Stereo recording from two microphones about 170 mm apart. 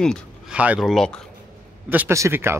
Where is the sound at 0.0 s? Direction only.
5° left (ahead or behind).